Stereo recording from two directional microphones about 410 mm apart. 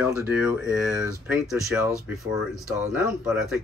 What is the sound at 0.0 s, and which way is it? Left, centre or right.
Speech, centre.